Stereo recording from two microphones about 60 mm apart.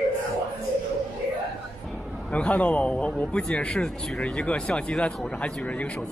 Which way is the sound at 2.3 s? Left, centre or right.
Left.